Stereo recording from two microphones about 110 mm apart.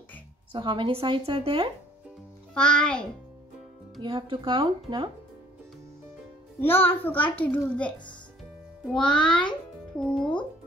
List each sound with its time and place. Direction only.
0.5 s speech: 50° right (ahead or behind)
2.5 s a child's voice: 10° left (ahead or behind)
4.0 s speech: 45° right (ahead or behind)
6.6 s a child's voice: 20° left (ahead or behind)
8.9 s a child's voice: 10° left (ahead or behind)